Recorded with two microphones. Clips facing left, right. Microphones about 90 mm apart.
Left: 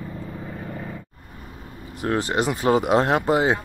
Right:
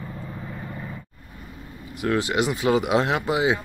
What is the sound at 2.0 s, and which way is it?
Speech, 35° left (ahead or behind).